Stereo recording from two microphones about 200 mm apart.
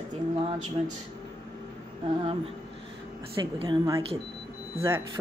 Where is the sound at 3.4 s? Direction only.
20° right (ahead or behind).